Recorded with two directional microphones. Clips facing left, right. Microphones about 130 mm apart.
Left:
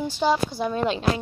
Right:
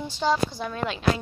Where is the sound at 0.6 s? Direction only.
25° left (ahead or behind).